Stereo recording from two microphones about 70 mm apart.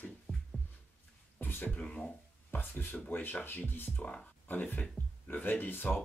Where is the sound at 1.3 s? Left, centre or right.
Left.